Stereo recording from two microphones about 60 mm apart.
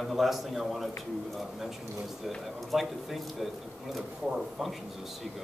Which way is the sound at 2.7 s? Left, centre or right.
Centre.